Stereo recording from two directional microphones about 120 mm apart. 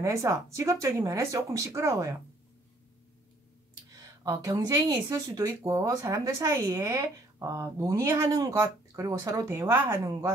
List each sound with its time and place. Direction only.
0.0 s a woman's voice: 25° right (ahead or behind)
3.9 s a woman's voice: 30° right (ahead or behind)